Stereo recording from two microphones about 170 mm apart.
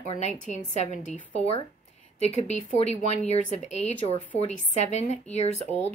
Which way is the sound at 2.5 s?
45° left (ahead or behind).